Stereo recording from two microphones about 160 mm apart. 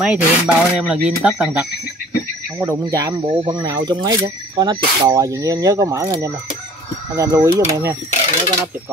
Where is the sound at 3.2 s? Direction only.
35° right (ahead or behind).